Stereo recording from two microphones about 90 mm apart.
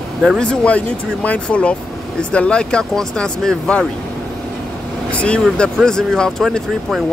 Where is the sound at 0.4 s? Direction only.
15° left (ahead or behind).